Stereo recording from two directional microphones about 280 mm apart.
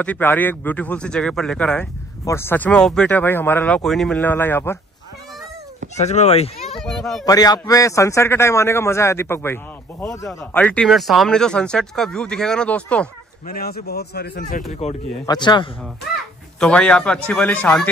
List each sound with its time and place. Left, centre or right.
0.0 s speech: centre
5.9 s a child's voice: left
6.8 s speech: centre
7.2 s a man's voice: centre
13.5 s speech: left
14.7 s a man's voice: left
16.5 s speech: centre